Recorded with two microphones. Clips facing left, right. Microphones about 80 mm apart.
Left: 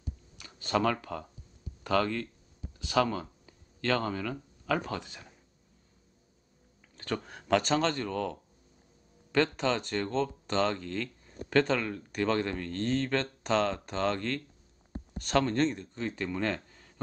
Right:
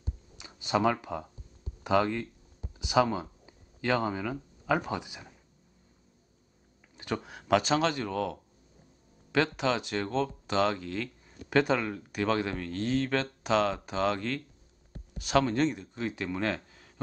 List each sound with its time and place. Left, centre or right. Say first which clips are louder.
0.0 s clicking: right 1 dB; centre
1.8 s speech: right 2 dB; centre
7.0 s speech: right 1 dB; centre